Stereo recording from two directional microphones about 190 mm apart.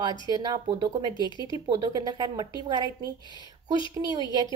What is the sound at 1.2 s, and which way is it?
Speech, 25° left (ahead or behind).